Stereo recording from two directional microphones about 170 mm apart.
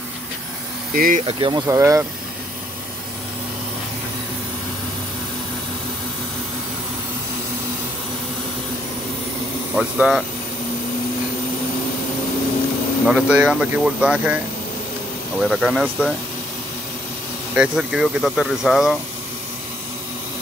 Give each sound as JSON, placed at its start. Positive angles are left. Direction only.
{"t": 0.9, "sound": "speech", "side_deg": -55}
{"t": 1.2, "sound": "speech", "side_deg": -30}
{"t": 1.7, "sound": "speech", "side_deg": -15}
{"t": 9.8, "sound": "speech", "side_deg": -5}
{"t": 13.0, "sound": "speech", "side_deg": -5}
{"t": 17.6, "sound": "speech", "side_deg": -5}